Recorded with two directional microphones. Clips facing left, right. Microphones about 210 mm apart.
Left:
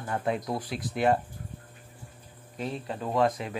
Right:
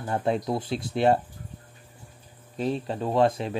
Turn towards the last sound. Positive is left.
turn(degrees=-30)  # may be behind; listen again after turning